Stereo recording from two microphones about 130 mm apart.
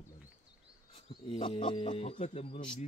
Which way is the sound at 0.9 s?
45° left (ahead or behind).